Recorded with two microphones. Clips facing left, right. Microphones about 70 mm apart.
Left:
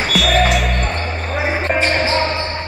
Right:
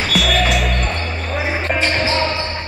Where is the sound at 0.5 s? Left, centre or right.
Centre.